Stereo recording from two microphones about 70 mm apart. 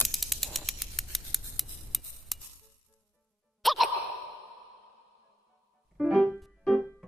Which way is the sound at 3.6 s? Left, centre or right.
Centre.